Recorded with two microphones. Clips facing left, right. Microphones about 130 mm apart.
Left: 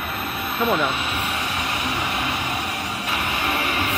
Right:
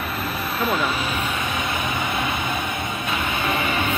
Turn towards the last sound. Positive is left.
turn(degrees=-30)  # may be behind; listen again after turning